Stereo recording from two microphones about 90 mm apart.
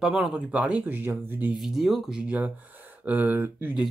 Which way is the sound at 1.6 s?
5° right (ahead or behind).